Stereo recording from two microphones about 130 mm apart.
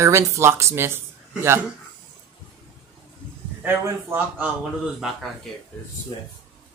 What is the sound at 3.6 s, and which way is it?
Speech, 15° right (ahead or behind).